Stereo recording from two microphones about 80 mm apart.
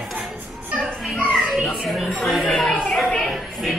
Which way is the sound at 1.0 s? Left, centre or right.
Centre.